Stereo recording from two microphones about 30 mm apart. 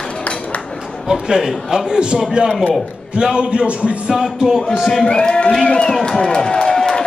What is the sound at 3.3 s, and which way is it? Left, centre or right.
Speech, right.